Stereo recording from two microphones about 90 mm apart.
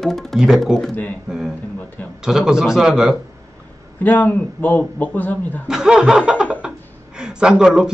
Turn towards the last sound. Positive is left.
turn(degrees=-10)  # may be behind; listen again after turning